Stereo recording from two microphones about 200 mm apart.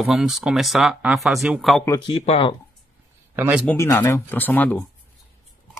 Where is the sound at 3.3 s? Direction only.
10° right (ahead or behind).